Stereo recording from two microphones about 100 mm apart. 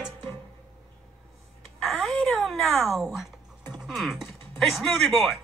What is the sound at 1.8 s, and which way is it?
Speech, centre (ahead or behind).